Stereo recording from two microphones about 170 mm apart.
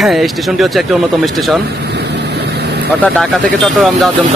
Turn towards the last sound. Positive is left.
turn(degrees=0)  # may be behind; listen again after turning